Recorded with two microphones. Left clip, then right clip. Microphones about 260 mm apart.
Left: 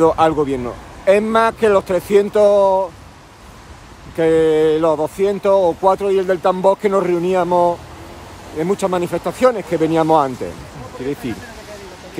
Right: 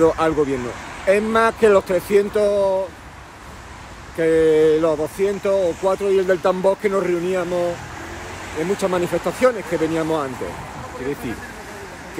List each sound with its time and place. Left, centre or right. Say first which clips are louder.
0.0 s speech: left 3 dB; centre
4.2 s speech: left 2 dB; centre
8.7 s speech: even; centre